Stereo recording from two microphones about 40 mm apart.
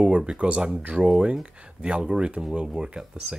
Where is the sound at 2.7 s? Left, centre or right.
Right.